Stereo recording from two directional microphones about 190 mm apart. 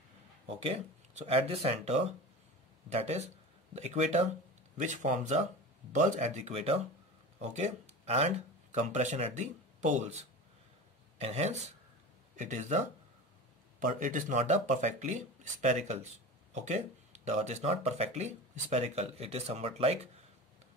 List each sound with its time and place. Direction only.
0.5 s speech: 30° right (ahead or behind)